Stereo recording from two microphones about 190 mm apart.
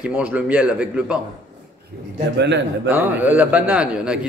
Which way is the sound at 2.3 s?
65° right (ahead or behind).